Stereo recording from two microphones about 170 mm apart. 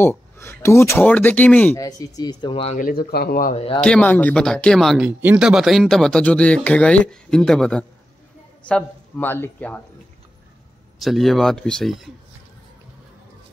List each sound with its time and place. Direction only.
0.0 s speech: 15° left (ahead or behind)
1.8 s speech: 20° left (ahead or behind)
2.8 s speech: 60° left (ahead or behind)
3.5 s a man's voice: 30° left (ahead or behind)
3.8 s speech: 5° left (ahead or behind)
11.0 s speech: centre (ahead or behind)